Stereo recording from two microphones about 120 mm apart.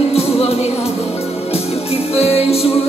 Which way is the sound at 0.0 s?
55° left (ahead or behind).